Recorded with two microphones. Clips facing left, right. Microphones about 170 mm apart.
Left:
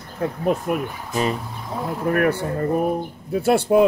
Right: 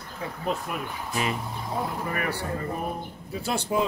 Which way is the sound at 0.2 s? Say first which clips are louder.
Left 8 dB; 50° left (ahead or behind).